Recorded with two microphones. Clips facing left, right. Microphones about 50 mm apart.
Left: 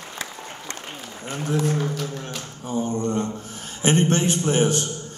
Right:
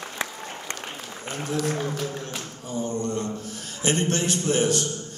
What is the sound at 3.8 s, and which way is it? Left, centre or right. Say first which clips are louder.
A man's voice: left 4 dB; left.